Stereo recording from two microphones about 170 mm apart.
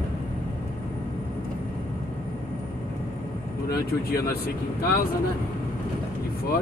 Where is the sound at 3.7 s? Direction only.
65° left (ahead or behind).